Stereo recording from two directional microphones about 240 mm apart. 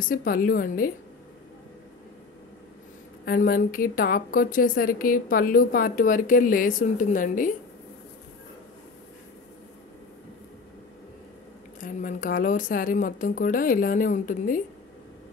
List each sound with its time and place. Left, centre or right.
0.0 s a woman's voice: left
3.3 s a woman's voice: left
11.8 s a woman's voice: left